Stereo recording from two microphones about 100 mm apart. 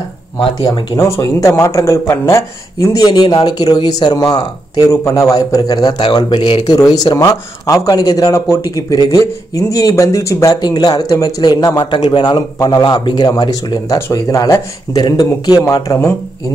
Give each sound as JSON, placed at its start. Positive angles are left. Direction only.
{"t": 0.9, "sound": "speech", "side_deg": 30}
{"t": 6.8, "sound": "speech", "side_deg": 40}
{"t": 15.0, "sound": "speech", "side_deg": 45}
{"t": 15.6, "sound": "speech", "side_deg": 35}